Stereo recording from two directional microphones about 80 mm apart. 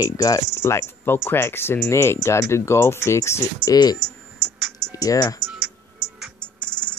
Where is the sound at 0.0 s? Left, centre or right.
Left.